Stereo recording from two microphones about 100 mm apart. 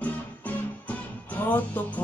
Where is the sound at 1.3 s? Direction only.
20° left (ahead or behind).